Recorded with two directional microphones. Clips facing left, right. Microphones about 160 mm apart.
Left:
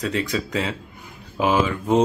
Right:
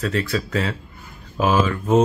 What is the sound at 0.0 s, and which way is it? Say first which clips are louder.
Speech: right 1 dB; 15° left (ahead or behind).